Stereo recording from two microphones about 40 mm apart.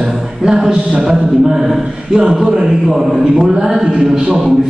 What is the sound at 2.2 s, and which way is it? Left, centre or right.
Speech, right.